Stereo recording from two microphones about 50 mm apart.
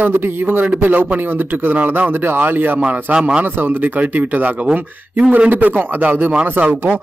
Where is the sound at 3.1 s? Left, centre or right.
Right.